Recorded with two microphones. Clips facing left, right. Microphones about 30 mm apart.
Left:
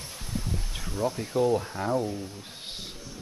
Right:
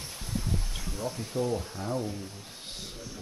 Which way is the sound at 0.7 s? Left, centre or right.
Centre.